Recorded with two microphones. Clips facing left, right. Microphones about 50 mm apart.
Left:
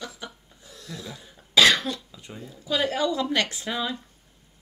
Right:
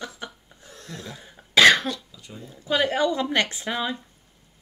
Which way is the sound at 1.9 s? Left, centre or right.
Left.